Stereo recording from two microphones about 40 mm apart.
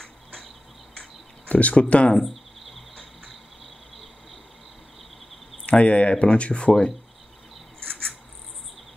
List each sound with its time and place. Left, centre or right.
0.0 s cricket: centre
1.5 s speech: left
2.1 s insect: centre
5.7 s speech: left